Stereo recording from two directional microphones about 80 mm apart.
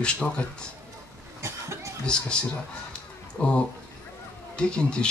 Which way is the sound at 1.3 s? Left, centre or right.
Right.